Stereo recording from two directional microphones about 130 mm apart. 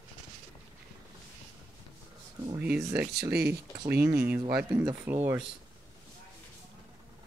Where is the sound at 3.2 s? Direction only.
25° right (ahead or behind).